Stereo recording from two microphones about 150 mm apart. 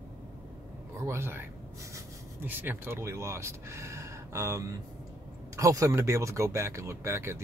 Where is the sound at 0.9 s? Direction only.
20° right (ahead or behind).